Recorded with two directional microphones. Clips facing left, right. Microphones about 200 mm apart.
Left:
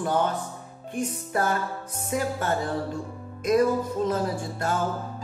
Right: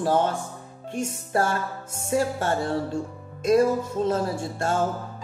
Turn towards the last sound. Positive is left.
turn(degrees=-25)  # may be behind; listen again after turning